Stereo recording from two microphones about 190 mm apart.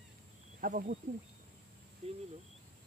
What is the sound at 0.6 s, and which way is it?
Speech, 45° right (ahead or behind).